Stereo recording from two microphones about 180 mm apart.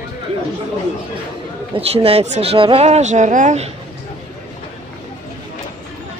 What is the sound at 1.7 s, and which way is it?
Speech, 35° right (ahead or behind).